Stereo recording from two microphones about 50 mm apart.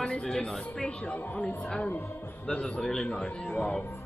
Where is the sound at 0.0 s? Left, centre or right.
Centre.